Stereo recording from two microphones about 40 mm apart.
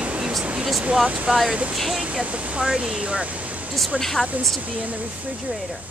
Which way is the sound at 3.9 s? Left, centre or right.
Right.